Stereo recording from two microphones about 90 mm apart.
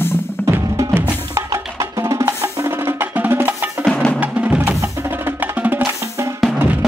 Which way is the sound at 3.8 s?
10° left (ahead or behind).